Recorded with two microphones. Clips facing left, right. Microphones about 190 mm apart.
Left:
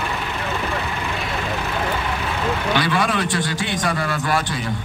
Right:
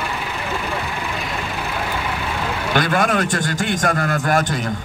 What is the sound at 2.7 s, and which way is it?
A man's voice, 50° right (ahead or behind).